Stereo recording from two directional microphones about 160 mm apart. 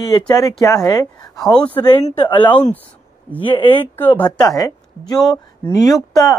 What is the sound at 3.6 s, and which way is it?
Speech, 10° left (ahead or behind).